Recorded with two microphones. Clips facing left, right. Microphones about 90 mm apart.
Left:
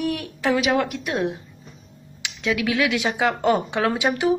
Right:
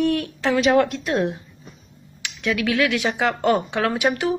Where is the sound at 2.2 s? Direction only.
20° left (ahead or behind).